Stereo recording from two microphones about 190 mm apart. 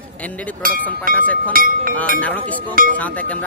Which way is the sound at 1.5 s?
50° right (ahead or behind).